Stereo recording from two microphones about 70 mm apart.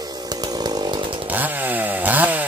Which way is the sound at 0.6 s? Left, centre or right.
Right.